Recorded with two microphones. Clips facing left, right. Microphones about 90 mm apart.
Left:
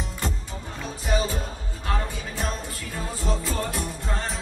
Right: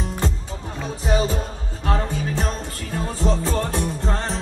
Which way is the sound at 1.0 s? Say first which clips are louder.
Right 4 dB; 25° right (ahead or behind).